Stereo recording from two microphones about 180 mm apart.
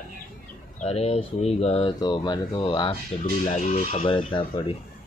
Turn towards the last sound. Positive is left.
turn(degrees=30)  # may be behind; listen again after turning